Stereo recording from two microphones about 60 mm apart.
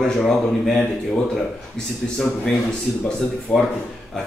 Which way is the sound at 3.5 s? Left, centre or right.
Left.